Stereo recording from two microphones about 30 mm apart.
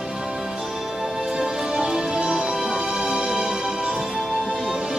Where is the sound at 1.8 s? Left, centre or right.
Right.